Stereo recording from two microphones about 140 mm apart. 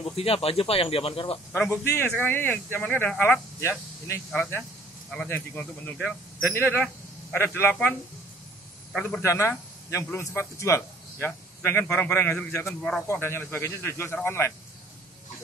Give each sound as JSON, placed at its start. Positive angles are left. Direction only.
{"t": 0.0, "sound": "speech", "side_deg": 45}
{"t": 1.7, "sound": "a man's voice", "side_deg": 15}
{"t": 9.0, "sound": "a man's voice", "side_deg": 20}